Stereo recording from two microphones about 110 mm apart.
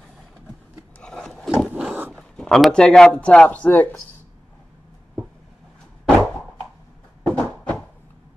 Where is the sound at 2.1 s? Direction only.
5° left (ahead or behind).